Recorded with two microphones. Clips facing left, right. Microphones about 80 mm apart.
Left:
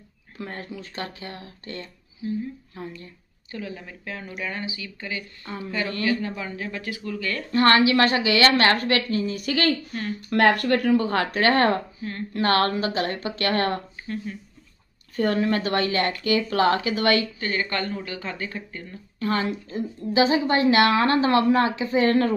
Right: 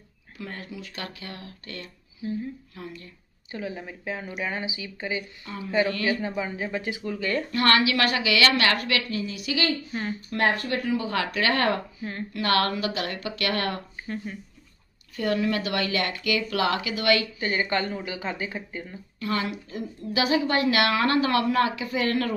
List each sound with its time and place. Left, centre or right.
0.4 s a woman's voice: left
3.5 s speech: centre
5.4 s a woman's voice: left
6.0 s speech: centre
7.5 s a woman's voice: left
14.0 s speech: centre
15.1 s a woman's voice: left
17.4 s speech: centre
19.1 s a woman's voice: left